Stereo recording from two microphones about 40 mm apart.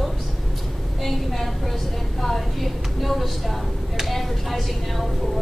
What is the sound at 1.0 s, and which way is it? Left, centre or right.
A woman's voice, centre.